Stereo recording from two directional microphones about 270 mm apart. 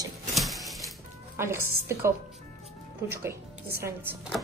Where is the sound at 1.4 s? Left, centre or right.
Centre.